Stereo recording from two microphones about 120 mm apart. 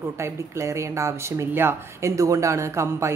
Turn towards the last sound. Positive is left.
turn(degrees=-25)  # may be behind; listen again after turning